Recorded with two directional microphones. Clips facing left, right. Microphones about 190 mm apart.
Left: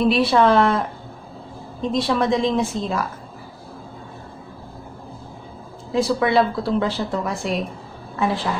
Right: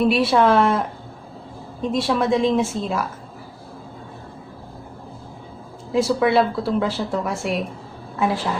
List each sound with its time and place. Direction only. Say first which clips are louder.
0.0 s speech: even; 5° right (ahead or behind)
5.9 s speech: right 1 dB; 5° right (ahead or behind)